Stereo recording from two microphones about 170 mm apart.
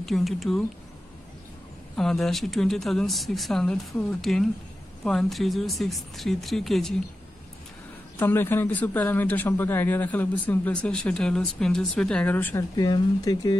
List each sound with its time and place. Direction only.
0.0 s speech: centre (ahead or behind)
2.0 s speech: centre (ahead or behind)
8.2 s a man's voice: 15° left (ahead or behind)
12.7 s speech: 25° left (ahead or behind)